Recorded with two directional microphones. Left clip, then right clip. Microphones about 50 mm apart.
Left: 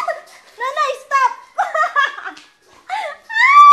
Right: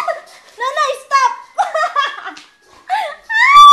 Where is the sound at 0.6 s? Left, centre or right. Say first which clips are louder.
Right 2 dB; right.